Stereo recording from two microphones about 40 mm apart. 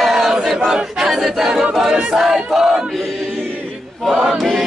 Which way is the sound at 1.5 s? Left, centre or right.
Right.